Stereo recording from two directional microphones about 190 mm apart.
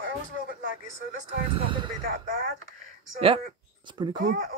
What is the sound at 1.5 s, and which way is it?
Speech, 25° right (ahead or behind).